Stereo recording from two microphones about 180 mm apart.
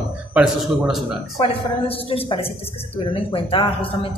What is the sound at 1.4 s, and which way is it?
A woman's voice, 30° left (ahead or behind).